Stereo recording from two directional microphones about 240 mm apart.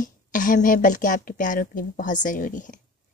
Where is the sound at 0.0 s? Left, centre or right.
Left.